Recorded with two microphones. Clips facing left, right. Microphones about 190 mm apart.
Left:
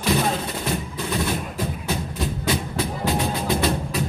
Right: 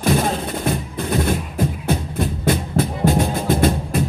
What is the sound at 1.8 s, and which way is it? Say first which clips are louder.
Music: right 5 dB; 55° right (ahead or behind).